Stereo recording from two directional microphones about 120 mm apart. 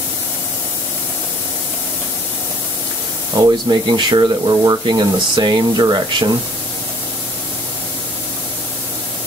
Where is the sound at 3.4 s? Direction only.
35° right (ahead or behind).